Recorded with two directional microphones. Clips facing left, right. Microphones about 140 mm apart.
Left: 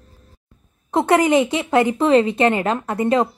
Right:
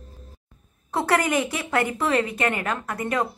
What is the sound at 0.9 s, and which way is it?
Speech, 20° left (ahead or behind).